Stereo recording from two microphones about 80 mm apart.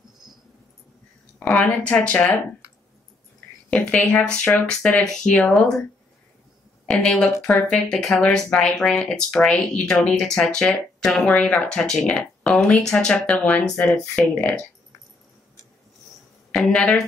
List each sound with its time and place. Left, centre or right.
1.4 s speech: centre
3.7 s speech: centre
6.9 s speech: centre
16.5 s speech: centre